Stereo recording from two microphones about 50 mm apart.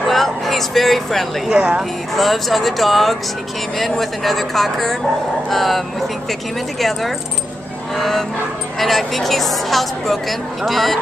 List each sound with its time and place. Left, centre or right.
0.0 s a sound: centre
1.5 s a woman's voice: centre
2.1 s a woman's voice: centre